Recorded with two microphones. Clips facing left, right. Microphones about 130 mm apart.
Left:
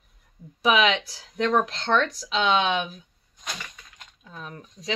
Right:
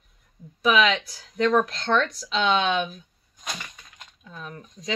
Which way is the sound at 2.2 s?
10° left (ahead or behind).